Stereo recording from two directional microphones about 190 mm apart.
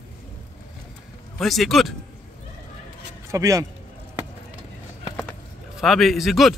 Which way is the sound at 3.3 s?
15° right (ahead or behind).